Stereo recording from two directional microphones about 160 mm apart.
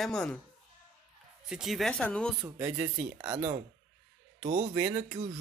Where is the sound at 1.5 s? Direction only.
Centre (ahead or behind).